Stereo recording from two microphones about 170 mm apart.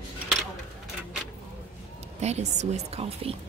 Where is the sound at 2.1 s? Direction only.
40° right (ahead or behind).